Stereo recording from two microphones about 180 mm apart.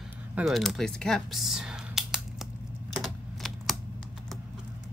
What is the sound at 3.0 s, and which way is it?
Typing, centre (ahead or behind).